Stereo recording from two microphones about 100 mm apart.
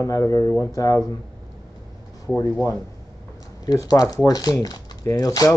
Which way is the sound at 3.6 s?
40° left (ahead or behind).